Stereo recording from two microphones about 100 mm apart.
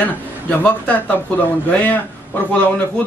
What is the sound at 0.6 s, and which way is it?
Speech, 15° left (ahead or behind).